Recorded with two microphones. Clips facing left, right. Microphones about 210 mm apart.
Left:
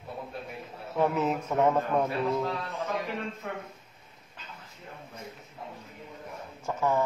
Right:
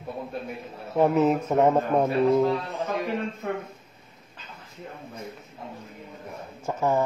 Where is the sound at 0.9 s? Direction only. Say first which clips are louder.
Right 6 dB; 30° right (ahead or behind).